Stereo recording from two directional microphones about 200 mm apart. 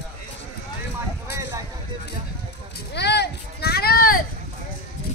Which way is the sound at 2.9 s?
55° left (ahead or behind).